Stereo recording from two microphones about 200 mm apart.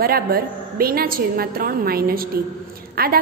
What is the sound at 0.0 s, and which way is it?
A woman's voice, 50° right (ahead or behind).